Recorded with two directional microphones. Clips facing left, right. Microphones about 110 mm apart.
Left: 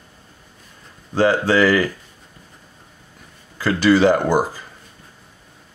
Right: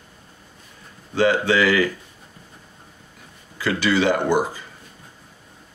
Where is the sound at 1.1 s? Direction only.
40° left (ahead or behind).